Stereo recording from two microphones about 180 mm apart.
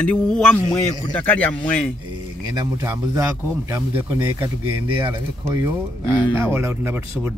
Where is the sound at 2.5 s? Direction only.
20° right (ahead or behind).